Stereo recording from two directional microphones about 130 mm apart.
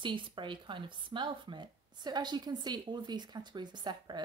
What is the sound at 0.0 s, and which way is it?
Speech, 40° right (ahead or behind).